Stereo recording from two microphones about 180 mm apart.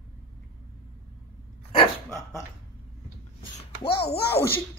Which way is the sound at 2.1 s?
15° left (ahead or behind).